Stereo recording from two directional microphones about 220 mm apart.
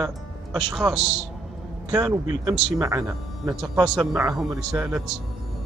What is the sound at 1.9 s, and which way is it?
A man's voice, 15° right (ahead or behind).